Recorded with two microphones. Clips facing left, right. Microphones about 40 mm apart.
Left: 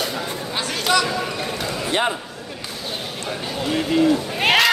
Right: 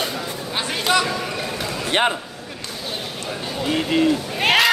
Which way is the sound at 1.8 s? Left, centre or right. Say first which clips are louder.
Right 2 dB; right.